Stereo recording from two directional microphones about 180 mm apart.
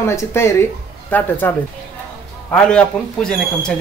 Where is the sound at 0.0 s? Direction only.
15° left (ahead or behind).